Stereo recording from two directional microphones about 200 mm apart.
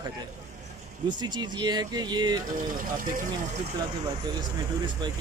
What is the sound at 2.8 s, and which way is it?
Speech, 45° right (ahead or behind).